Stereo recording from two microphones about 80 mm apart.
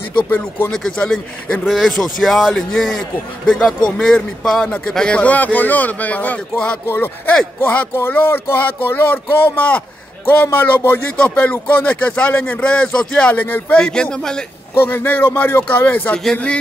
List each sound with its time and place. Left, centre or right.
0.7 s speech: centre
1.7 s a man's voice: centre
6.9 s speech: left; by 14.4 s centre
14.9 s speech: left